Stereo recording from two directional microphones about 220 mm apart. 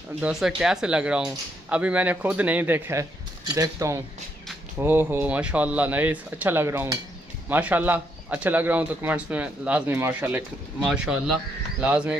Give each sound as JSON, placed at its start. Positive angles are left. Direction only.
{"t": 0.2, "sound": "speech", "side_deg": -5}